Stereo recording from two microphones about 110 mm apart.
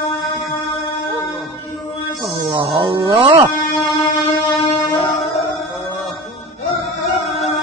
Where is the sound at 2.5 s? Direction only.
35° right (ahead or behind).